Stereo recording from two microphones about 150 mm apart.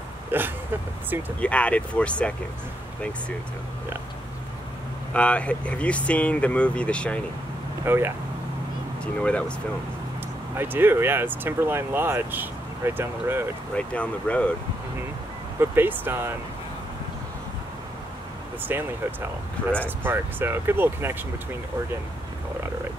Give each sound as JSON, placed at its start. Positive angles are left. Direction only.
{"t": 0.3, "sound": "speech", "side_deg": -15}
{"t": 1.4, "sound": "speech", "side_deg": 10}
{"t": 5.1, "sound": "speech", "side_deg": 10}
{"t": 7.8, "sound": "speech", "side_deg": -15}
{"t": 9.0, "sound": "speech", "side_deg": 10}
{"t": 10.5, "sound": "speech", "side_deg": -15}
{"t": 13.7, "sound": "speech", "side_deg": 10}
{"t": 15.6, "sound": "speech", "side_deg": -15}
{"t": 18.6, "sound": "speech", "side_deg": -15}